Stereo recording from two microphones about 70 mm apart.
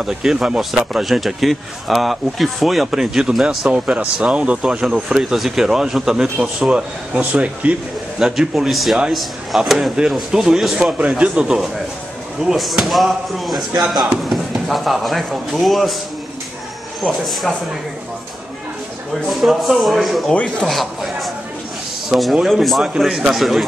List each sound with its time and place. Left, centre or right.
0.0 s speech: centre
7.2 s speech: right
8.2 s speech: centre
13.7 s speech: centre
14.3 s speech: centre
17.0 s speech: centre
19.2 s speech: centre